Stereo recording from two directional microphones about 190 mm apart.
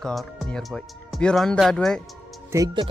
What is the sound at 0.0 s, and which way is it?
Speech, centre (ahead or behind).